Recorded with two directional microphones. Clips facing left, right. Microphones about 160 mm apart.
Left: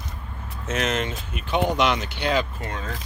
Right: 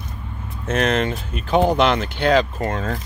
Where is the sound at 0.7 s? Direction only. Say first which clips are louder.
Right 6 dB; 55° right (ahead or behind).